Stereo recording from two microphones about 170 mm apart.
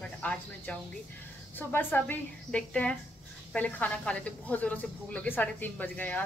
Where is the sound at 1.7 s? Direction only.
10° left (ahead or behind).